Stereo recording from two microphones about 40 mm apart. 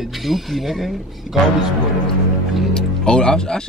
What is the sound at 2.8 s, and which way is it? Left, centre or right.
Speech, centre.